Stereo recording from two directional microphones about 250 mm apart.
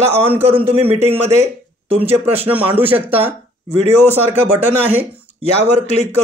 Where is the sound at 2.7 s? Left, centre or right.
Centre.